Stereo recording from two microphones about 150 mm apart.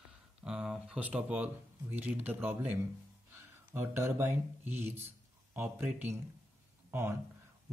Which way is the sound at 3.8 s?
15° right (ahead or behind).